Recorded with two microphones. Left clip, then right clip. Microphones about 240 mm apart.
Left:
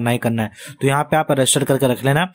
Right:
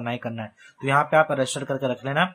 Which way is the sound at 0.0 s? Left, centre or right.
Left.